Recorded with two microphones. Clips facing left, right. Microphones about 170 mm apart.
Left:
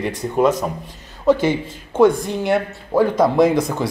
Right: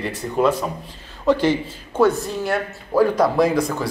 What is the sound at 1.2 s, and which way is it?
A man's voice, 10° left (ahead or behind).